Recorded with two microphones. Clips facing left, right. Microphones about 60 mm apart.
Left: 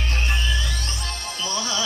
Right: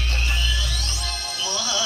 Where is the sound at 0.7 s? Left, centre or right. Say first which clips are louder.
Even; left.